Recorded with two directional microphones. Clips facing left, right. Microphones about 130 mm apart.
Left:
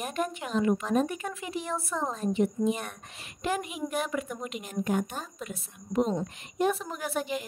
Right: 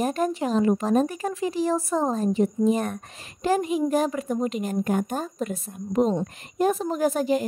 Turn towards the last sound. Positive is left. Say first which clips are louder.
# right 10 dB
turn(degrees=-40)  # may be behind; listen again after turning